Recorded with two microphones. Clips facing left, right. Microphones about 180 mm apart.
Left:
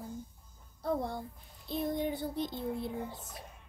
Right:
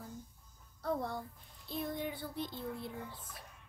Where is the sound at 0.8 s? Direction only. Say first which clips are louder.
Left 3 dB; 15° left (ahead or behind).